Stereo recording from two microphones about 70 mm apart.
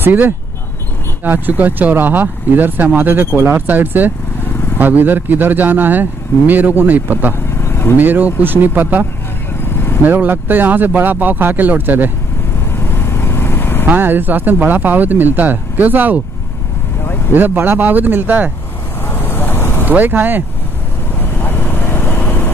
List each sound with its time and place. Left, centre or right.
0.0 s speech: right
3.3 s speech: right
3.5 s speech: right
7.6 s vehicle: left
8.0 s speech: right
10.0 s speech: right
12.7 s vehicle: left
13.8 s speech: right
17.3 s speech: right
19.0 s vehicle: left
19.9 s speech: right
21.2 s vehicle: left